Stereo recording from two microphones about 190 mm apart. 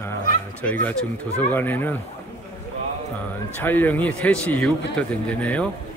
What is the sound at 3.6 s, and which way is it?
Speech, 10° left (ahead or behind).